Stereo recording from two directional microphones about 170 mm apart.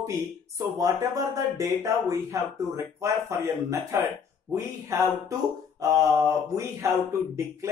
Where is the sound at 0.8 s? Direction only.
20° right (ahead or behind).